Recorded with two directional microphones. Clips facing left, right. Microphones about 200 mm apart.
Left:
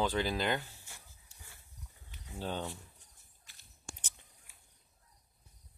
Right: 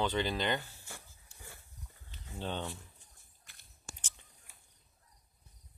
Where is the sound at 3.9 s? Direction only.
5° right (ahead or behind).